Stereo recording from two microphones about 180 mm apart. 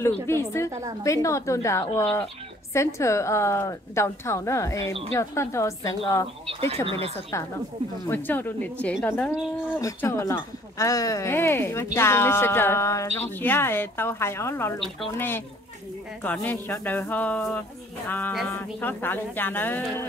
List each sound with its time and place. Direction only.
0.0 s speech: 15° left (ahead or behind)
6.4 s speech: 30° right (ahead or behind)
8.1 s speech: 10° left (ahead or behind)